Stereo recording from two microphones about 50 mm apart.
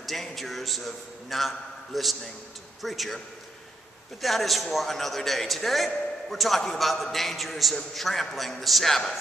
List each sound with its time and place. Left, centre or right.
0.0 s a man's voice: centre
4.2 s a man's voice: centre